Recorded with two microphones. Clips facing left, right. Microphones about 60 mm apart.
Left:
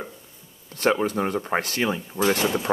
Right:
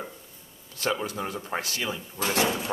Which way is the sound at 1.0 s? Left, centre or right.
Left.